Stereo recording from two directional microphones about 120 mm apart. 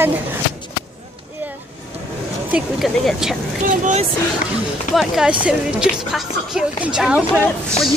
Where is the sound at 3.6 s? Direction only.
80° right.